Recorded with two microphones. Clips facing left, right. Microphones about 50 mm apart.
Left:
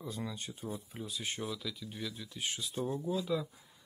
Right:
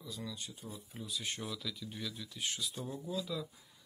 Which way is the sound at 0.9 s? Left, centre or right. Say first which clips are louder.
Left 1 dB; left.